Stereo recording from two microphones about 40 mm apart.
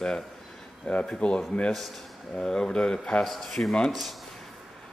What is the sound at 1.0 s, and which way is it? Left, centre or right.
Speech, left.